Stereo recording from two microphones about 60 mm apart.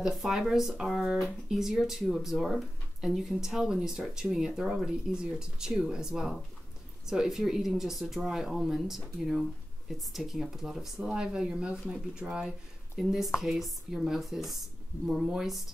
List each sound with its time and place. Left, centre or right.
0.0 s speech: centre